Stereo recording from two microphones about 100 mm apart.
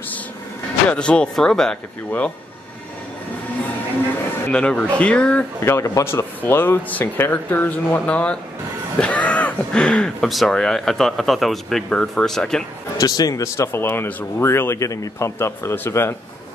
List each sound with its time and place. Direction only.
0.8 s speech: 10° left (ahead or behind)
4.5 s speech: 10° left (ahead or behind)
5.6 s speech: 25° left (ahead or behind); by 12.6 s 5° left (ahead or behind)
12.9 s speech: 40° left (ahead or behind); by 16.2 s 25° left (ahead or behind)